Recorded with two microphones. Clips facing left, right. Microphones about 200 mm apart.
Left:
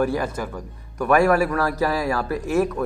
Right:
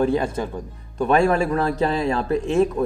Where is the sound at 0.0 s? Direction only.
25° right (ahead or behind).